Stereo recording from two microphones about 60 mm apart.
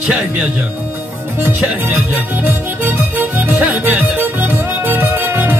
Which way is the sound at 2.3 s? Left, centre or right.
Right.